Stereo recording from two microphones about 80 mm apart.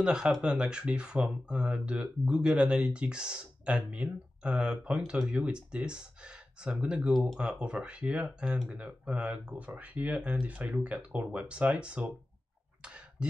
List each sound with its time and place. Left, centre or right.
0.0 s speech: centre
7.1 s speech: centre
7.3 s speech: centre
12.8 s a sound: centre